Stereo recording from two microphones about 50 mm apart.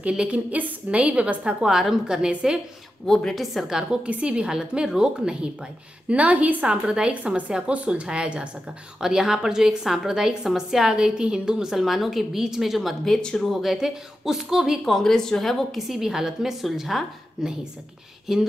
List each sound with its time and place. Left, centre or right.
0.3 s a woman's voice: right
3.1 s a woman's voice: centre
3.6 s a woman's voice: centre
4.0 s a woman's voice: right
6.0 s a woman's voice: right
6.9 s a woman's voice: centre
11.7 s a woman's voice: centre
13.0 s a woman's voice: centre
13.4 s a woman's voice: centre
14.9 s a woman's voice: centre
15.9 s a woman's voice: centre